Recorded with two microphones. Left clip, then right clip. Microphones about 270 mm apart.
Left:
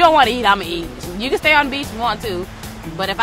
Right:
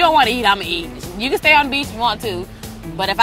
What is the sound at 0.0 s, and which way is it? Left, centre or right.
Speech, right.